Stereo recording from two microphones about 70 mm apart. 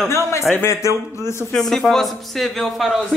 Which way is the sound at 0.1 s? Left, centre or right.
Left.